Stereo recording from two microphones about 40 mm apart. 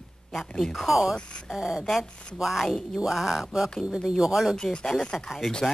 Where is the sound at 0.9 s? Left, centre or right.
Centre.